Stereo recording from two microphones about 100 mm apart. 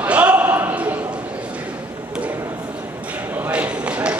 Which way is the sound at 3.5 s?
10° right (ahead or behind).